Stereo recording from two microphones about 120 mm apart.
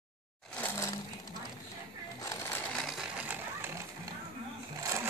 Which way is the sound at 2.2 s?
20° left (ahead or behind).